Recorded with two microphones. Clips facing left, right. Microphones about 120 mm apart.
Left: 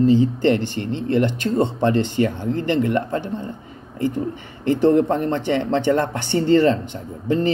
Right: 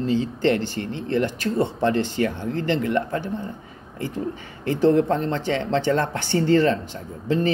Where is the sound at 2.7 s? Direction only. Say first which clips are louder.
Left 3 dB; 50° left (ahead or behind).